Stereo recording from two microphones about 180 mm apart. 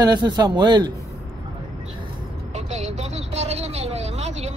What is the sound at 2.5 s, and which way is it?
Vehicle, 40° right (ahead or behind).